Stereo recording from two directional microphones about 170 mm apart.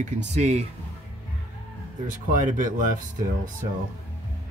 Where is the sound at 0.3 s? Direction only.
40° right (ahead or behind).